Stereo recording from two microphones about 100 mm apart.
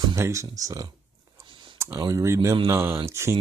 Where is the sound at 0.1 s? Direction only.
30° right (ahead or behind).